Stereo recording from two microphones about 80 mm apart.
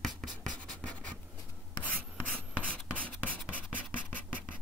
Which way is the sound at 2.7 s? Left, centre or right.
Centre.